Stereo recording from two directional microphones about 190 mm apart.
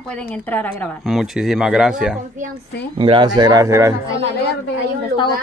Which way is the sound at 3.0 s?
25° right (ahead or behind).